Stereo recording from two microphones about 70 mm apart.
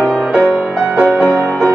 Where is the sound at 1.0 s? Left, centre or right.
Centre.